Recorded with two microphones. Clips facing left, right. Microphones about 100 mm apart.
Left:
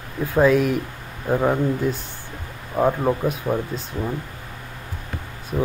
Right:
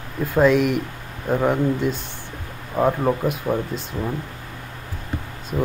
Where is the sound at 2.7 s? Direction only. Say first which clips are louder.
Even; 5° right (ahead or behind).